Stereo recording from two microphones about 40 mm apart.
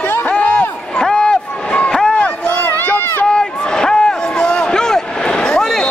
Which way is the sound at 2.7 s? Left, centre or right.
Left.